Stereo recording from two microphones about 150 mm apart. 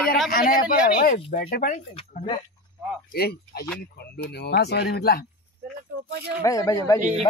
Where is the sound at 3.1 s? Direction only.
90° left.